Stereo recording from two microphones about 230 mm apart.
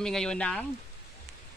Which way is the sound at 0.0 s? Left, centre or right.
Centre.